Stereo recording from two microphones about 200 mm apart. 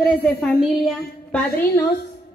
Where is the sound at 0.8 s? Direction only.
5° left (ahead or behind).